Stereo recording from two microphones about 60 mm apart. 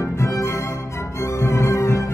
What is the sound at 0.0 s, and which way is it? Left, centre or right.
Music, left.